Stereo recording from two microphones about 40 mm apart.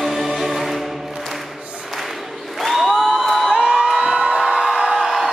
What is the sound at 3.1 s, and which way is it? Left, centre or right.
Crowd, centre.